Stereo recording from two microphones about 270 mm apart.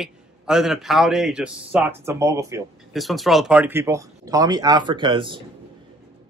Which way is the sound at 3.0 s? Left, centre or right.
Centre.